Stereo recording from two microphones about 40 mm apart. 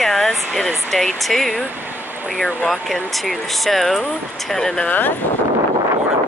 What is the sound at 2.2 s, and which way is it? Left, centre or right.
Speech, left.